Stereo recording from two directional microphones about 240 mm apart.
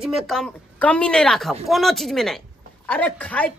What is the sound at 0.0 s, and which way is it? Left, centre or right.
A woman's voice, centre.